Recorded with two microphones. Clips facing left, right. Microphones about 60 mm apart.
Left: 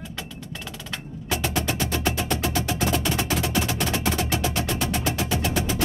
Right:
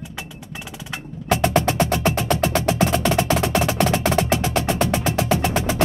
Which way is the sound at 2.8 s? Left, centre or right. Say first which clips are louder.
Right 4 dB; right.